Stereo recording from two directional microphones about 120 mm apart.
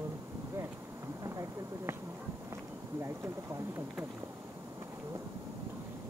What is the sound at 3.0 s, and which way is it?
Speech, 25° right (ahead or behind).